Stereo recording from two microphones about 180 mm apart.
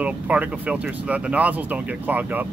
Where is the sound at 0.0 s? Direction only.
5° right (ahead or behind).